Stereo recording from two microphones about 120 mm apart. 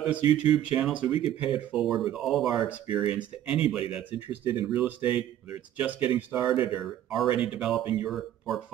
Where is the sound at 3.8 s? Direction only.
55° left (ahead or behind).